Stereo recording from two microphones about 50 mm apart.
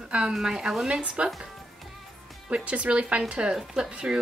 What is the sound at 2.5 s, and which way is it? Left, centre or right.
A woman's voice, right.